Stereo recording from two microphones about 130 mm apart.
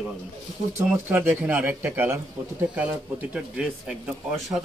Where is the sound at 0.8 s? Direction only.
15° right (ahead or behind).